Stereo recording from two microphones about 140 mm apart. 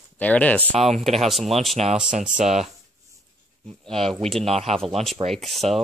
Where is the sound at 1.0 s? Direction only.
Centre (ahead or behind).